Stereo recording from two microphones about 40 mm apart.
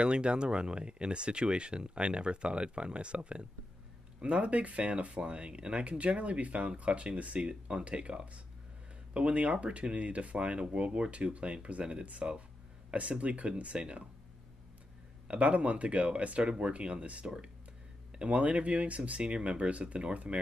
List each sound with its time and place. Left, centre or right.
0.0 s speech: right
15.2 s speech: right